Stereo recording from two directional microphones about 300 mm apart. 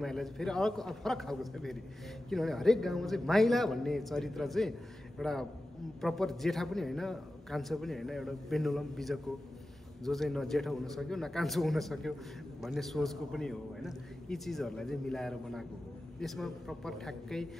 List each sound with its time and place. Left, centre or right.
0.0 s a man's voice: centre